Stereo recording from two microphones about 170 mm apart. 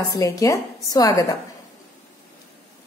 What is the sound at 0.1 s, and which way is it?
A woman's voice, 20° left (ahead or behind).